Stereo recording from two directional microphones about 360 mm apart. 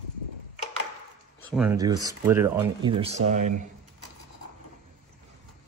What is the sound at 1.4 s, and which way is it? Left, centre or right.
Speech, centre.